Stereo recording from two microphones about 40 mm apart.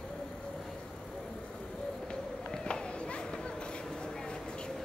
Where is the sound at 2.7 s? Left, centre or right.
Left.